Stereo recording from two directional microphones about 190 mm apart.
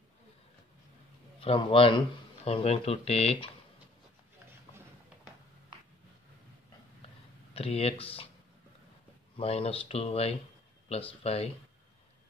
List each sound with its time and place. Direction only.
1.4 s speech: 30° left (ahead or behind)
7.5 s speech: 30° left (ahead or behind)
9.4 s speech: 30° left (ahead or behind)